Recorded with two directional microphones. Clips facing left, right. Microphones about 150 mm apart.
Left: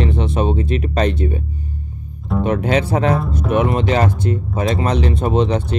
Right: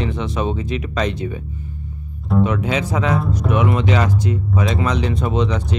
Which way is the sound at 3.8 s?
50° left (ahead or behind).